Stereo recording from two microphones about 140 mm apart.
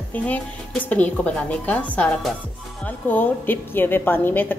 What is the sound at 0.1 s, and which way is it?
A woman's voice, 10° left (ahead or behind).